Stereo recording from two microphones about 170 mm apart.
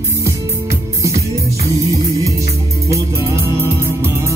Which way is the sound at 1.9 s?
20° right (ahead or behind).